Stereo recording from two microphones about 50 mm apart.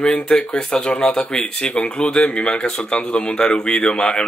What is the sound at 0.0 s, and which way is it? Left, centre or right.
Speech, centre.